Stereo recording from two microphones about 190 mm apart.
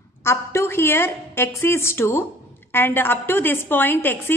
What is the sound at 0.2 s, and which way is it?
A woman's voice, 15° left (ahead or behind).